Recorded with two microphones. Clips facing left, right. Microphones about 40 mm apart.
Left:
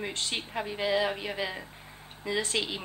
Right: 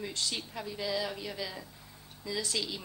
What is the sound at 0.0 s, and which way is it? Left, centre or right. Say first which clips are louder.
A woman's voice: left 3 dB; left.